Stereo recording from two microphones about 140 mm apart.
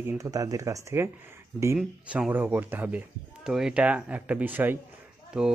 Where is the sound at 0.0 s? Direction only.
25° right (ahead or behind).